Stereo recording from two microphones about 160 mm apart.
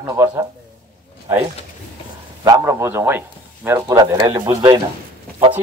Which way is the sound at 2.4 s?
20° right (ahead or behind).